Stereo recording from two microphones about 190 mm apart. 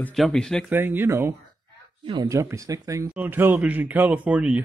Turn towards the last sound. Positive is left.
turn(degrees=-5)  # may be behind; listen again after turning